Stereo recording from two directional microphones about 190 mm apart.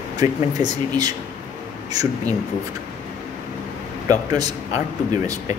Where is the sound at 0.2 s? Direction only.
20° right (ahead or behind).